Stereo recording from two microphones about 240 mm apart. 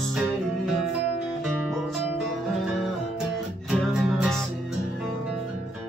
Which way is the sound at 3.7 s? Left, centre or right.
Centre.